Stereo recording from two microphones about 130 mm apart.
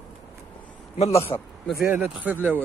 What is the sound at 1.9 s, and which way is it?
Speech, 10° right (ahead or behind).